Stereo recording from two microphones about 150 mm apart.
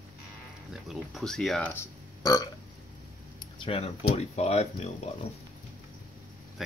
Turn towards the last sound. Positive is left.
turn(degrees=0)  # may be behind; listen again after turning